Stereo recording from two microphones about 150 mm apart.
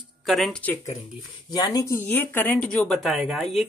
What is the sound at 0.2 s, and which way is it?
Speech, centre (ahead or behind).